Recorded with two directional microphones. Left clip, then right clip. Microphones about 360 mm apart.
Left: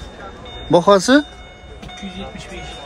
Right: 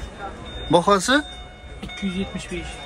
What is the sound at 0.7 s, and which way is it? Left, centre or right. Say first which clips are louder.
Speech: left 5 dB; centre.